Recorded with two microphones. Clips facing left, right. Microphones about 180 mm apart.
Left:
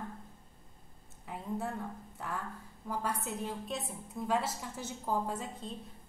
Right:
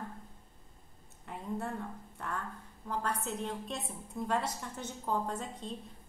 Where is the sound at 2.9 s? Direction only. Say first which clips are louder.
Right 1 dB; 10° left (ahead or behind).